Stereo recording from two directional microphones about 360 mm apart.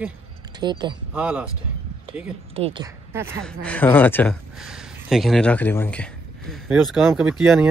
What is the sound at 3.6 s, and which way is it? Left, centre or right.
Speech, centre.